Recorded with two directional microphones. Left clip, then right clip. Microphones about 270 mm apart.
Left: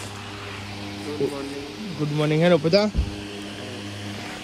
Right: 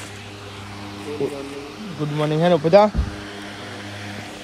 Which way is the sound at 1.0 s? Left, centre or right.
Centre.